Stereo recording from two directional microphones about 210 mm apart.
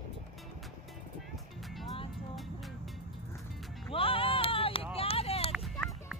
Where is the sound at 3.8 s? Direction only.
25° left (ahead or behind).